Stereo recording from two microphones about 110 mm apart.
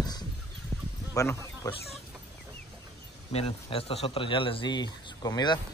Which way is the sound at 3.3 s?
65° left (ahead or behind).